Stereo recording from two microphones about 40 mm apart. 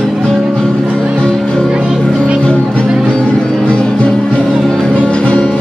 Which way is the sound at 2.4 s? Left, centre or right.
Left.